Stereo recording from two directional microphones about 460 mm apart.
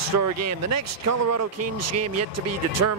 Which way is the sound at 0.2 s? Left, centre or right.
Right.